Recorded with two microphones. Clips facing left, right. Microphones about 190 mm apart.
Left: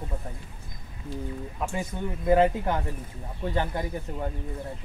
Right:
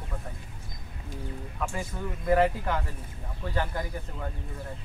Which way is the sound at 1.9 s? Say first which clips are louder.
Left 3 dB; 20° left (ahead or behind).